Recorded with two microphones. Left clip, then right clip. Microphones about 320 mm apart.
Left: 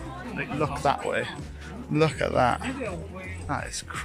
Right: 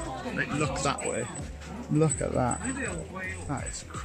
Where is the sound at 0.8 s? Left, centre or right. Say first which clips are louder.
Left 8 dB; left.